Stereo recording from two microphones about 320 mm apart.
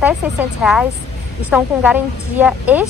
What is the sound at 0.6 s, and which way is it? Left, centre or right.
A woman's voice, centre.